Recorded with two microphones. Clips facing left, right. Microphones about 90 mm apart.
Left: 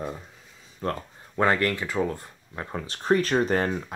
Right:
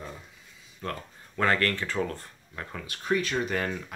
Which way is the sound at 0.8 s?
25° left (ahead or behind).